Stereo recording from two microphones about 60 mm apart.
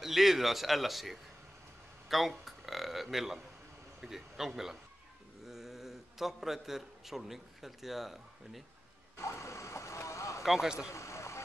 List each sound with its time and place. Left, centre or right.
0.0 s a man's voice: centre
9.1 s vehicle: left
10.4 s speech: centre
10.9 s a sound: left